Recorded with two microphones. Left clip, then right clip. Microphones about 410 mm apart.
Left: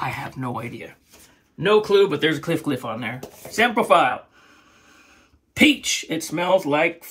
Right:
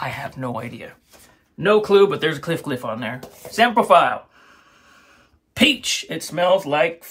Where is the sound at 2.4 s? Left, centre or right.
Centre.